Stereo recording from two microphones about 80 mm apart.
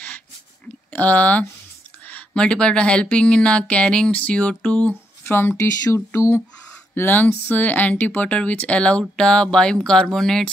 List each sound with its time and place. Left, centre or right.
0.9 s speech: centre
5.6 s a sound: left
7.0 s speech: left; by 10.5 s centre